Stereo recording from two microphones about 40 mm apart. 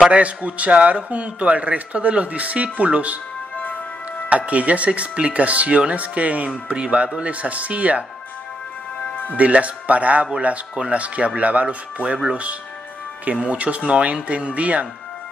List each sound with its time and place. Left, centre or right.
0.1 s a man's voice: right
4.3 s a man's voice: right
9.4 s a man's voice: right
13.3 s a man's voice: right